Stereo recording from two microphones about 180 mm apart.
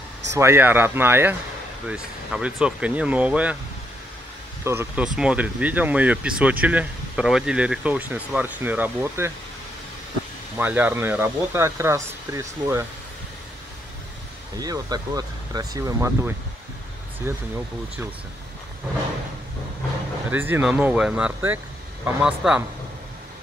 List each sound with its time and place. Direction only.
0.4 s speech: 10° right (ahead or behind)
4.6 s speech: 10° right (ahead or behind)
10.6 s speech: 10° right (ahead or behind)
14.6 s speech: 20° right (ahead or behind)
20.2 s speech: 10° right (ahead or behind)